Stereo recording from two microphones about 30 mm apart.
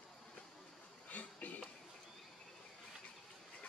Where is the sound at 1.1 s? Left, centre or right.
Left.